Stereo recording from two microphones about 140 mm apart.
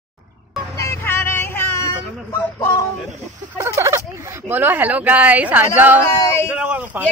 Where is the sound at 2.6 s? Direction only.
20° left (ahead or behind).